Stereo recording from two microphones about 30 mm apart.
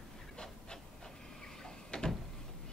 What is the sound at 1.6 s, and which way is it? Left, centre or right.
Door, left.